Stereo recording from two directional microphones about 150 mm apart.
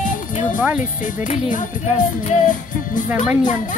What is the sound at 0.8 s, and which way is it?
Speech, 55° left (ahead or behind).